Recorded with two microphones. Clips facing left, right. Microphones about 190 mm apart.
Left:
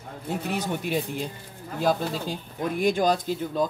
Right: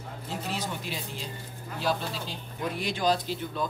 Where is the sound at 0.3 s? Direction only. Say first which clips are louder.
Left 6 dB; 60° left (ahead or behind).